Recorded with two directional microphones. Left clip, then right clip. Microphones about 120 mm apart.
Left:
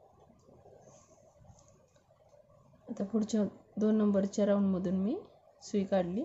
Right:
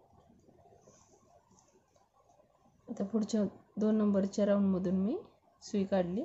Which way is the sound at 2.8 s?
Centre (ahead or behind).